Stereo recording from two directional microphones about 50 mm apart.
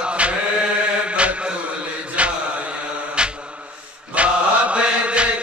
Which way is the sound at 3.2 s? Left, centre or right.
Centre.